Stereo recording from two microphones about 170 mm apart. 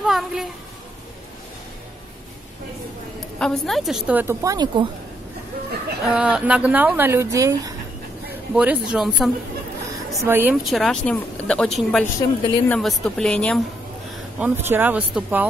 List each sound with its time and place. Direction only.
0.0 s a woman's voice: 5° right (ahead or behind)
3.2 s a woman's voice: 5° left (ahead or behind); by 4.8 s 20° right (ahead or behind)
6.0 s speech: 5° right (ahead or behind)
8.3 s a sound: 10° right (ahead or behind)
8.9 s a woman's voice: centre (ahead or behind)
10.1 s speech: 15° right (ahead or behind)
10.6 s a woman's voice: centre (ahead or behind)
12.2 s speech: 20° left (ahead or behind)
12.6 s a woman's voice: 5° left (ahead or behind)
14.4 s speech: 10° right (ahead or behind)